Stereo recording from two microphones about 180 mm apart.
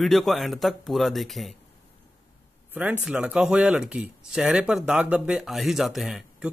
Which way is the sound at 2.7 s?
10° right (ahead or behind).